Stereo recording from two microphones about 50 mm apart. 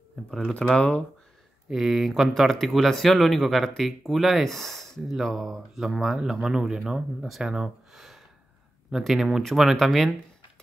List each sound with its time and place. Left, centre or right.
0.6 s speech: centre
1.7 s speech: centre
6.1 s speech: centre